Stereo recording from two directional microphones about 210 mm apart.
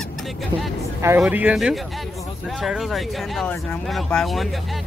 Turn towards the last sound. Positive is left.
turn(degrees=0)  # may be behind; listen again after turning